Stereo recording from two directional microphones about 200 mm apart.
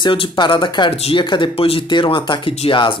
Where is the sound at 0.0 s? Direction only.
25° left (ahead or behind).